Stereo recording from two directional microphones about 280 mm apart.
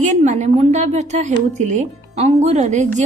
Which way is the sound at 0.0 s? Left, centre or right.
Right.